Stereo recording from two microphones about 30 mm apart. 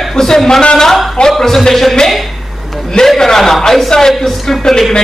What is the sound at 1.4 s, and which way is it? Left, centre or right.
Speech, centre.